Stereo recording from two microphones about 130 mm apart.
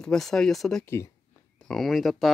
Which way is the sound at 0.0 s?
5° left (ahead or behind).